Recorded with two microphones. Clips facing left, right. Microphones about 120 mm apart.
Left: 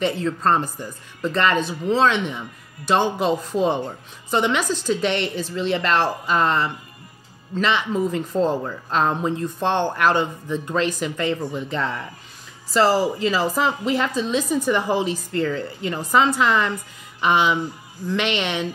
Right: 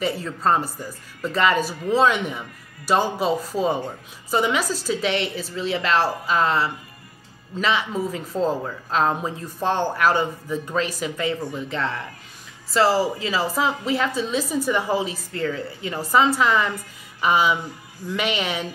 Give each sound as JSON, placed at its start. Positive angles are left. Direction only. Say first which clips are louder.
{"t": 0.0, "sound": "a woman's voice", "louder": "left 2 dB", "side_deg": -5}